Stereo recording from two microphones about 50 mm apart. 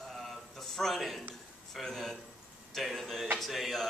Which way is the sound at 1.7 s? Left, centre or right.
Centre.